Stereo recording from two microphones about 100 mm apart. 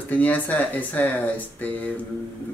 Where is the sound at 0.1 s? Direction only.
15° left (ahead or behind).